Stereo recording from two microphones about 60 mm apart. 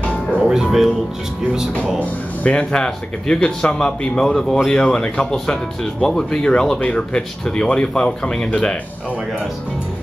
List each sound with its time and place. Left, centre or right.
0.4 s music: centre
1.5 s speech: centre
2.5 s speech: centre